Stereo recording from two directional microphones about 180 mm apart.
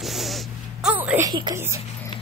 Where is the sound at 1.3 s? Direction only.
25° right (ahead or behind).